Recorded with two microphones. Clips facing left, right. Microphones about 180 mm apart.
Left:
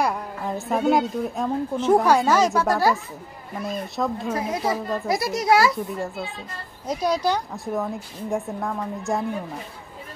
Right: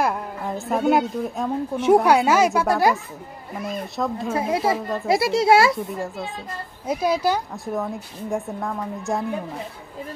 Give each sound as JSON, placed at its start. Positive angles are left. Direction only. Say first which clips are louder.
{"t": 0.0, "sound": "a woman's voice", "louder": "right 1 dB", "side_deg": 0}
{"t": 3.5, "sound": "a woman's voice", "louder": "even", "side_deg": 0}
{"t": 4.4, "sound": "speech", "louder": "right 5 dB", "side_deg": -30}
{"t": 4.7, "sound": "a woman's voice", "louder": "even", "side_deg": 0}
{"t": 5.0, "sound": "speech", "louder": "right 7 dB", "side_deg": -25}
{"t": 5.7, "sound": "a woman's voice", "louder": "right 2 dB", "side_deg": 0}